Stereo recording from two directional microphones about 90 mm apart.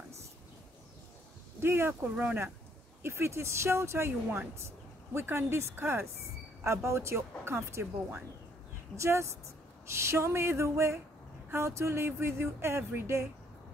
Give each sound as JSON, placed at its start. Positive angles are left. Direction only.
{"t": 1.6, "sound": "speech", "side_deg": -25}